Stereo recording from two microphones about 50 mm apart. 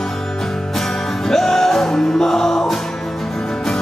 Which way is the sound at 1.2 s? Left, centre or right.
Centre.